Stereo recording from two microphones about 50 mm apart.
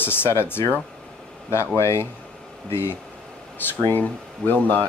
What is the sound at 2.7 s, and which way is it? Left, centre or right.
Speech, left.